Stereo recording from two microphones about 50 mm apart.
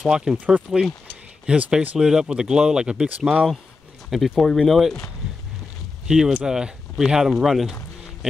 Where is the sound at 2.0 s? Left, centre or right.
Centre.